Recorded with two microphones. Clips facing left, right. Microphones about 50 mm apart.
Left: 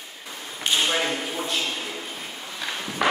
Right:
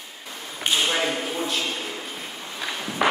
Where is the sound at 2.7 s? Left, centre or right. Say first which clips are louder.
Right 1 dB; centre.